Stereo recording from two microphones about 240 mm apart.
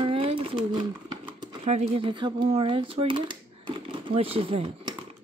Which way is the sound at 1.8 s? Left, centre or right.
Right.